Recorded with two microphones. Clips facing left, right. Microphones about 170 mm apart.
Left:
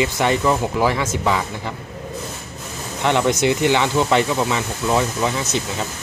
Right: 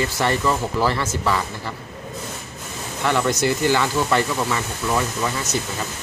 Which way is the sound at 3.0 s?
20° left (ahead or behind).